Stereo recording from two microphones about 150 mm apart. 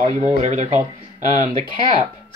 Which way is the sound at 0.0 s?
50° right (ahead or behind).